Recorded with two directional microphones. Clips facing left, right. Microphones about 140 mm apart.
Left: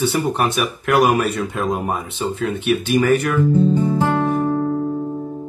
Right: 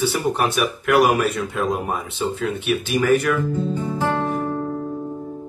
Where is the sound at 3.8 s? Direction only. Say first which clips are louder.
Left 4 dB; 20° left (ahead or behind).